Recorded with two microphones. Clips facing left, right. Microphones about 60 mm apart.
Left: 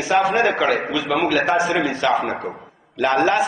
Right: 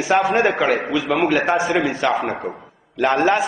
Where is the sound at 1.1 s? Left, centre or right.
Centre.